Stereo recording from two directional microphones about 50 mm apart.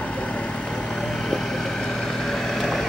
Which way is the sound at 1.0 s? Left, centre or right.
Centre.